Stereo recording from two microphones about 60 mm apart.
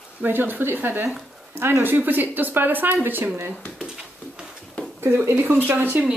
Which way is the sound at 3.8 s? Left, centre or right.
Centre.